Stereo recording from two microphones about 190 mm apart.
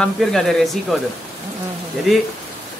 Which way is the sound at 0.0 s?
Centre (ahead or behind).